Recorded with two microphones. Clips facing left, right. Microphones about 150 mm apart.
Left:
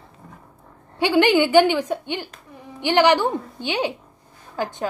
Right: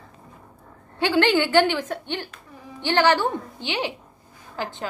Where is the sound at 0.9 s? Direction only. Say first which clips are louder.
Left 3 dB; 15° left (ahead or behind).